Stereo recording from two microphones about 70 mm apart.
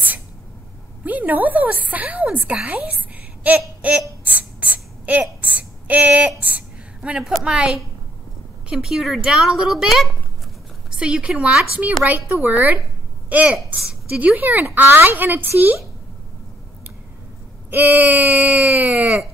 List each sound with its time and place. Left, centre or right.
1.0 s a woman's voice: right
3.4 s a sound: centre
6.4 s a woman's voice: centre
12.4 s a woman's voice: right
17.6 s a woman's voice: right